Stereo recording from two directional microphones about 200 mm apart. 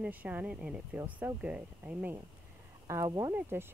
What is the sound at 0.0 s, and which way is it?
Speech, 5° right (ahead or behind).